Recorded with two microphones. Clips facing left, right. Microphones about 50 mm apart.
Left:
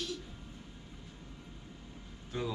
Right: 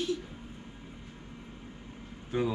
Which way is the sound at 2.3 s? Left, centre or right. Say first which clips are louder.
Right 7 dB; centre.